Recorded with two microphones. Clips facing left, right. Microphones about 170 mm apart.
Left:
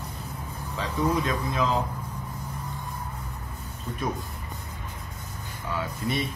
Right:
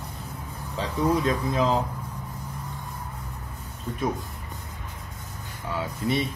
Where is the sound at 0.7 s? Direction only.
35° right (ahead or behind).